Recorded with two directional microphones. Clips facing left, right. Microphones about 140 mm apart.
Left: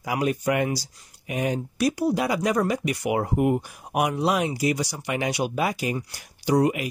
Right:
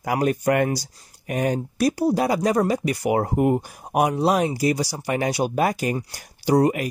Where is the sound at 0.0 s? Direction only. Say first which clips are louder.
Right 3 dB; 45° right (ahead or behind).